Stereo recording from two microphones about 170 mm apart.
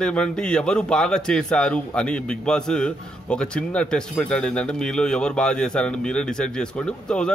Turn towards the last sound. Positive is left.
turn(degrees=5)  # may be behind; listen again after turning